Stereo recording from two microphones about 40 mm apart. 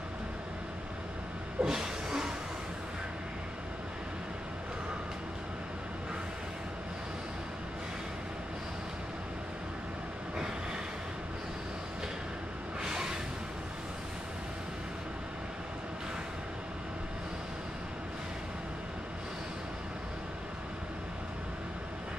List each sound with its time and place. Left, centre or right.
1.6 s vehicle: centre
12.8 s music: centre